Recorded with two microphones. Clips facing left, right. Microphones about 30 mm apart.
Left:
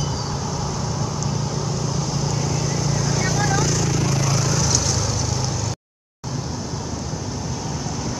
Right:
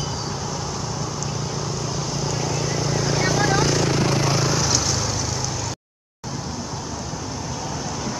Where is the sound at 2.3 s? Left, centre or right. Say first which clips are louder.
Even; centre.